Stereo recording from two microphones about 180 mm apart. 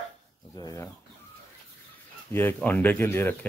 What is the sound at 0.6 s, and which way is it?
Speech, 20° left (ahead or behind).